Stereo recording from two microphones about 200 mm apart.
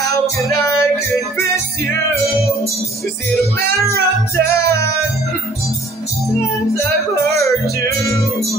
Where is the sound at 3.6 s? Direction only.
50° right (ahead or behind).